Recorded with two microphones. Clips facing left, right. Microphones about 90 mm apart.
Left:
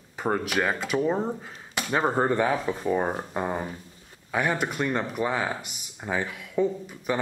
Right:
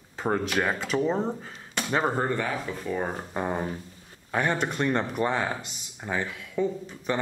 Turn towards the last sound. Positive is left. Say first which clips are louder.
# left 1 dB
turn(degrees=10)  # may be behind; listen again after turning